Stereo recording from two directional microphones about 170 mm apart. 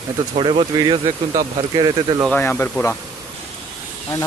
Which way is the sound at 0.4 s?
30° right (ahead or behind).